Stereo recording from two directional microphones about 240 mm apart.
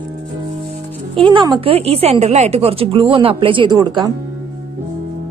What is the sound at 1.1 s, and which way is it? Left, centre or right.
A woman's voice, right.